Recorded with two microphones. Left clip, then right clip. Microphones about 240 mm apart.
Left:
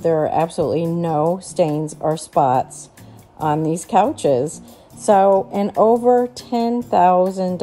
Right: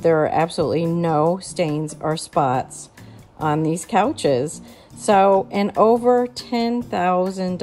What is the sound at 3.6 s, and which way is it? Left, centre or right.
Speech, centre.